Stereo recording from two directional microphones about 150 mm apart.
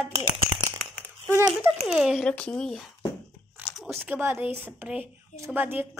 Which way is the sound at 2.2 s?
10° left (ahead or behind).